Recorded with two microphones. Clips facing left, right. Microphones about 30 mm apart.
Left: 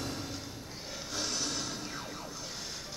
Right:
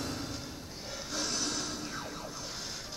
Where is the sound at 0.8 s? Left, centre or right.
Centre.